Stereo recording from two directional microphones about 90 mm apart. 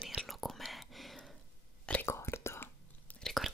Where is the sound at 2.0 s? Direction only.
30° left (ahead or behind).